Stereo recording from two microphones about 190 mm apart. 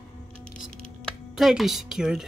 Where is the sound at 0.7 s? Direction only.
40° left (ahead or behind).